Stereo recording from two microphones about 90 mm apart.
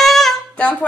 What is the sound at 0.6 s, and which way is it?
Speech, 15° left (ahead or behind).